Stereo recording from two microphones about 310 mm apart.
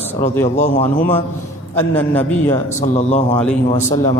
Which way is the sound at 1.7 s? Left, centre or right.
Centre.